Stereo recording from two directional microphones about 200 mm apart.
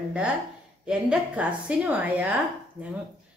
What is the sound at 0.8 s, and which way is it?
A woman's voice, 5° right (ahead or behind).